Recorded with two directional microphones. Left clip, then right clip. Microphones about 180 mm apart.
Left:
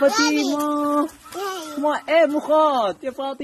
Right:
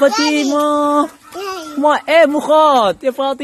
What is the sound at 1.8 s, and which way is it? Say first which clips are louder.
A man's voice: right 7 dB; 55° right (ahead or behind).